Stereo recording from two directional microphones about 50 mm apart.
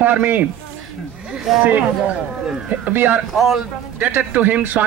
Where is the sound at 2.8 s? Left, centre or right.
Right.